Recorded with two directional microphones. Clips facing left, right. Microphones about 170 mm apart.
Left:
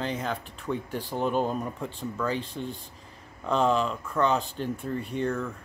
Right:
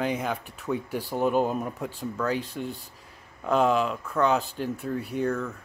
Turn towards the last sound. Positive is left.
turn(degrees=-5)  # may be behind; listen again after turning